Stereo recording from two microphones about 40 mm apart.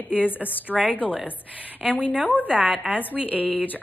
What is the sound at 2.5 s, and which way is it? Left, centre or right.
Speech, right.